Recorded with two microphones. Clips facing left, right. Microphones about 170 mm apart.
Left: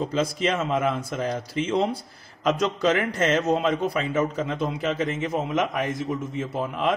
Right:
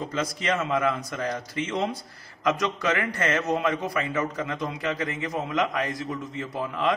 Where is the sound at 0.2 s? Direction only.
25° left (ahead or behind).